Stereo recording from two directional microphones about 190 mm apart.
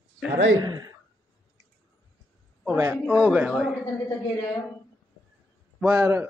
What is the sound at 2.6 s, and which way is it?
Speech, 10° right (ahead or behind).